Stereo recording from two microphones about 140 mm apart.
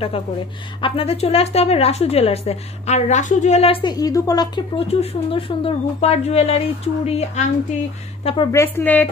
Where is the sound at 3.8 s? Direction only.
30° left (ahead or behind).